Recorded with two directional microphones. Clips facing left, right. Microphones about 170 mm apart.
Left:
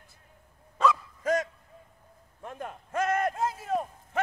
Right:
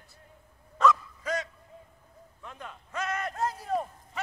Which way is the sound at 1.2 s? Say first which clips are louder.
Left 6 dB; 50° left (ahead or behind).